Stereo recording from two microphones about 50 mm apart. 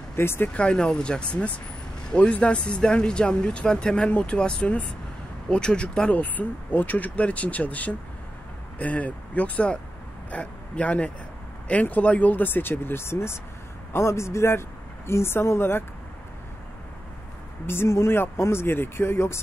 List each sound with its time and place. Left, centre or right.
0.1 s speech: left
0.5 s speech: left
7.2 s speech: left
13.9 s a man's voice: left
17.6 s speech: left